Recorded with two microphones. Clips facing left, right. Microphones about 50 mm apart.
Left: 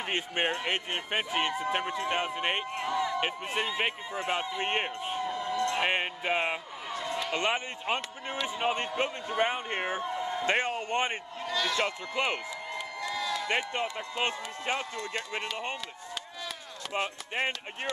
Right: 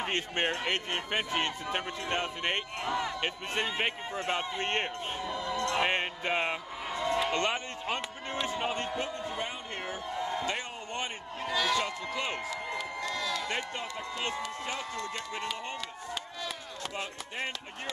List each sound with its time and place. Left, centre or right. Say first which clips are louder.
0.0 s speech: left 1 dB; centre
2.9 s speech: left 2 dB; right
3.2 s speech: left 2 dB; centre
5.8 s music: even; centre
6.9 s a sound: right 3 dB; right
7.3 s speech: left 1 dB; centre
8.9 s a man's voice: left 4 dB; left
10.1 s a sound: left 1 dB; centre
10.4 s a man's voice: left 6 dB; left
11.4 s a man's voice: right 2 dB; centre
11.8 s a man's voice: left 3 dB; left
13.1 s a sound: left 2 dB; centre
13.5 s speech: left 4 dB; left
16.9 s a man's voice: left 9 dB; left